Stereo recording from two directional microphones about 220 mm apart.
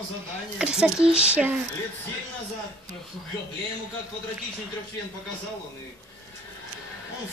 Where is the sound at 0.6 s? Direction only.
5° right (ahead or behind).